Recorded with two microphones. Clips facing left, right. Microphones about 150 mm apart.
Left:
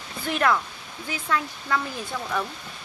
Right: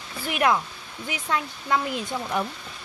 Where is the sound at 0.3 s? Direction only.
15° right (ahead or behind).